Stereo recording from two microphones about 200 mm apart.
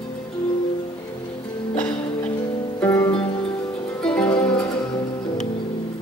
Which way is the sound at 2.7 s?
10° left (ahead or behind).